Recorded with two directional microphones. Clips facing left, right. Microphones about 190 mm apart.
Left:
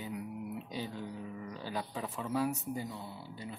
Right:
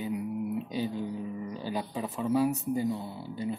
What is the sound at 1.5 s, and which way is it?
Speech, 15° right (ahead or behind).